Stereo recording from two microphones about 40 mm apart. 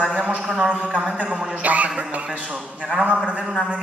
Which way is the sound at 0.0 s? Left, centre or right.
Right.